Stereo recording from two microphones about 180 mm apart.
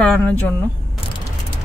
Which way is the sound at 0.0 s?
5° left (ahead or behind).